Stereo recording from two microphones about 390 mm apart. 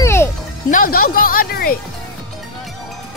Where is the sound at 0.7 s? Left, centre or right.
Left.